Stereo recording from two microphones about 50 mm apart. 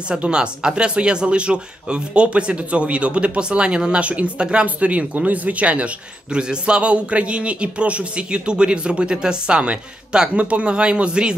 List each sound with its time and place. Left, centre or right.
0.1 s a man's voice: centre